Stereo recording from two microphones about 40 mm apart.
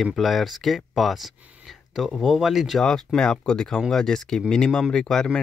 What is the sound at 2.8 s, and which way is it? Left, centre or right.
Speech, centre.